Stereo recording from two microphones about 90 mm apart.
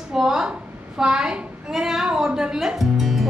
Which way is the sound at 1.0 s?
10° right (ahead or behind).